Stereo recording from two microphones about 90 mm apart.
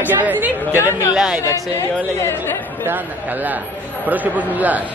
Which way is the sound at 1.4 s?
35° left (ahead or behind).